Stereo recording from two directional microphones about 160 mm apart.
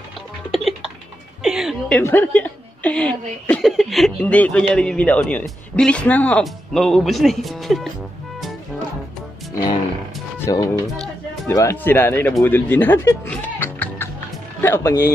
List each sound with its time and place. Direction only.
0.5 s music: centre (ahead or behind)
1.4 s a sound: 5° right (ahead or behind)
2.0 s a woman's voice: 10° left (ahead or behind)
10.4 s a woman's voice: 20° left (ahead or behind)
13.3 s music: 10° left (ahead or behind)
14.6 s a woman's voice: 15° left (ahead or behind)